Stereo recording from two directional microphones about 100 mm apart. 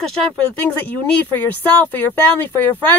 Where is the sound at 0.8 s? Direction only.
20° left (ahead or behind).